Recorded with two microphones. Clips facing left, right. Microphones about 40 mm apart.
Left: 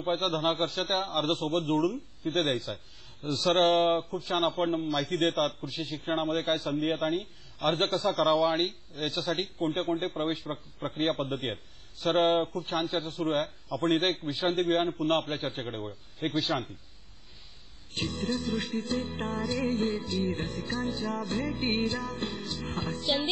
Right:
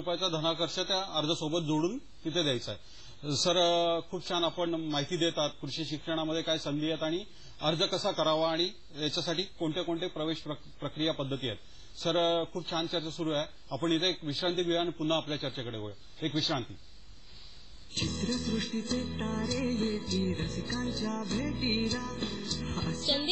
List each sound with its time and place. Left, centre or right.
0.0 s a man's voice: left
3.3 s speech: centre
3.5 s a man's voice: left
5.7 s speech: left
5.9 s a man's voice: left
7.2 s a man's voice: left
9.0 s speech: left
9.6 s a man's voice: left
17.9 s a man's voice: left
22.5 s music: left